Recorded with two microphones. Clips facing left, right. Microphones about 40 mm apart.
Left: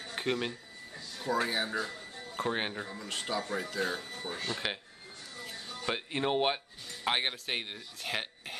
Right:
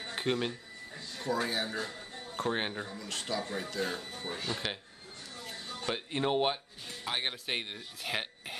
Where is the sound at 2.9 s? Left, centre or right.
Centre.